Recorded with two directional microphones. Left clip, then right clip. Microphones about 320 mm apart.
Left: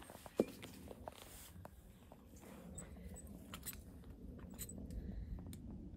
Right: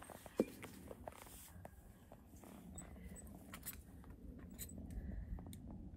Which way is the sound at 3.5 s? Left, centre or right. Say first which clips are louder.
Left 2 dB; centre.